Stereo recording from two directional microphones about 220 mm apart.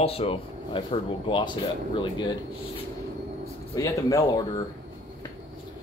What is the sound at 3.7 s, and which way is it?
Speech, 15° left (ahead or behind).